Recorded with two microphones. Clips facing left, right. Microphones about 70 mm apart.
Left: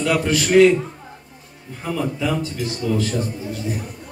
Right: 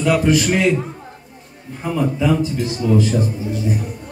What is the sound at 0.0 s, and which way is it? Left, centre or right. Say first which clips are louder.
Speech: right 4 dB; centre.